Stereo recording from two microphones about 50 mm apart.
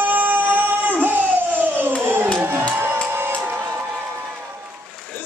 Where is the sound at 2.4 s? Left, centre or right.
Right.